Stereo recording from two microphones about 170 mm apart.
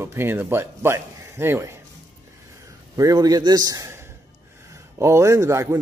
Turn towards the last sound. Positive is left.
turn(degrees=-15)  # may be behind; listen again after turning